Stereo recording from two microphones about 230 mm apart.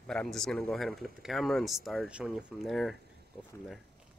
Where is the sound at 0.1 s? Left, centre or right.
Centre.